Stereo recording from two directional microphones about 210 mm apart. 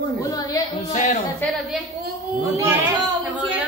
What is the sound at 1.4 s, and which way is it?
Speech, centre (ahead or behind).